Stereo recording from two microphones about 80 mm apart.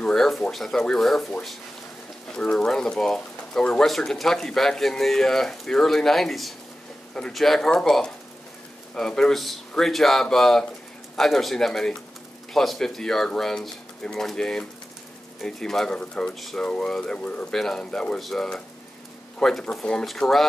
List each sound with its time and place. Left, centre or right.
0.0 s speech: centre
2.3 s speech: centre